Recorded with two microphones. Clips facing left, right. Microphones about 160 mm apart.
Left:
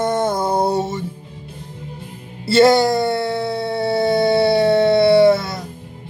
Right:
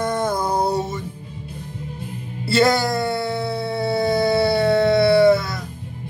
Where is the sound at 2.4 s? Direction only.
25° left (ahead or behind).